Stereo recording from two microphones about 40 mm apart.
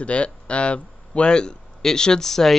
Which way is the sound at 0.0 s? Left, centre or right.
Left.